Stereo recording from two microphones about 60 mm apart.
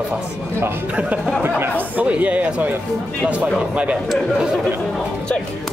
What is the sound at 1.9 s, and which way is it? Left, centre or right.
Speech, right.